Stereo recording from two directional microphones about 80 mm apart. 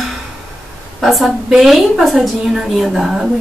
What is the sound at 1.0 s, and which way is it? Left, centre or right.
A woman's voice, centre.